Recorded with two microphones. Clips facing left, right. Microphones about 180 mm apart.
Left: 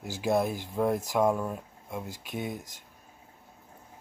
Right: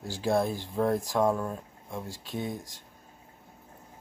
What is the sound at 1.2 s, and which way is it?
Speech, 10° left (ahead or behind).